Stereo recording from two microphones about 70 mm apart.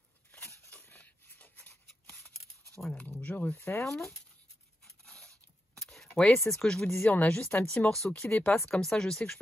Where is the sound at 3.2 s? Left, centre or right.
Left.